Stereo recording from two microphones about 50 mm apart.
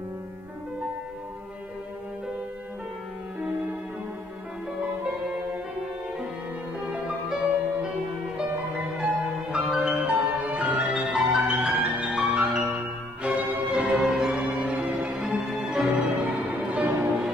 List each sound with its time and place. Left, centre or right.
7.2 s music: centre
10.0 s music: right
10.9 s music: centre
13.2 s music: right
13.9 s music: centre
14.6 s music: centre
16.3 s music: right